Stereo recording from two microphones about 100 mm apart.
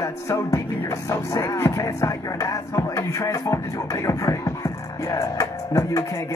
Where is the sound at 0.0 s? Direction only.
30° left (ahead or behind).